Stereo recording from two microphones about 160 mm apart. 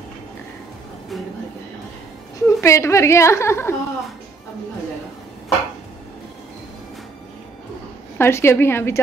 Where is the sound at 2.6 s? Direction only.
15° left (ahead or behind).